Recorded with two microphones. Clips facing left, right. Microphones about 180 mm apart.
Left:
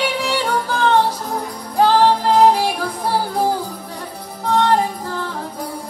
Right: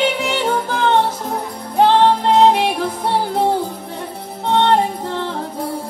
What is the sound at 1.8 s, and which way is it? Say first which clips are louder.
Music: right 1 dB; 25° right (ahead or behind).